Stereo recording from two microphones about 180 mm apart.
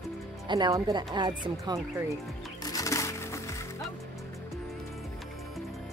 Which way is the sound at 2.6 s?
20° left (ahead or behind).